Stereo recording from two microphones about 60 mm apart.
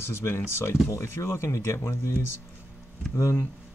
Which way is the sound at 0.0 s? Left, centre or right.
Left.